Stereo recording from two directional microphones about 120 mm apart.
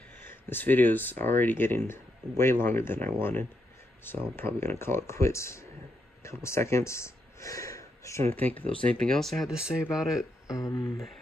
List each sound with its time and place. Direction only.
0.2 s speech: 20° left (ahead or behind)
8.3 s speech: 15° left (ahead or behind); by 10.2 s 5° right (ahead or behind)
10.4 s speech: 25° left (ahead or behind)